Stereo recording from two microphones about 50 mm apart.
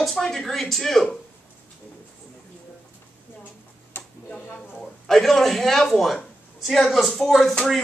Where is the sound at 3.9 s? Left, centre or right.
Left.